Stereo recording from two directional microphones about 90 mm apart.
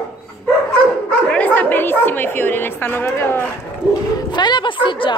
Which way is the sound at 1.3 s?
20° left (ahead or behind).